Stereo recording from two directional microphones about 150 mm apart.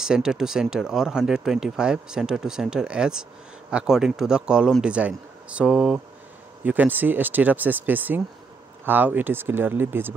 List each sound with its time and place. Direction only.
0.0 s speech: 5° right (ahead or behind)